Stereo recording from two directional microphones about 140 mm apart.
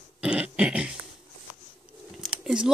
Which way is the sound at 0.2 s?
10° right (ahead or behind).